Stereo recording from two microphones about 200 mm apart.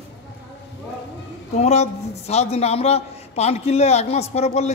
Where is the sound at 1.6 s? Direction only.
35° left (ahead or behind).